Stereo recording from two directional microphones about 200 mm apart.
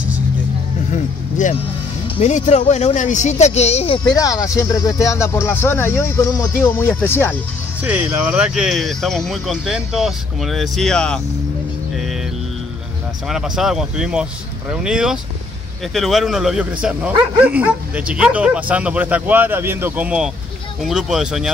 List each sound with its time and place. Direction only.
0.9 s vehicle: 35° left (ahead or behind)
2.1 s speech: 35° left (ahead or behind); by 7.3 s 10° left (ahead or behind)
7.8 s speech: 5° right (ahead or behind)
13.3 s speech: centre (ahead or behind)